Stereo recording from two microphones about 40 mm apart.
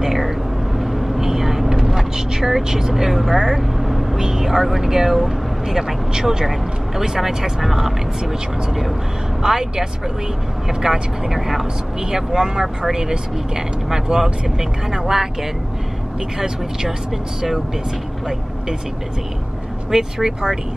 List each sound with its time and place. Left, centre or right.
0.0 s vehicle: centre
4.2 s speech: centre
16.3 s speech: centre
19.9 s speech: centre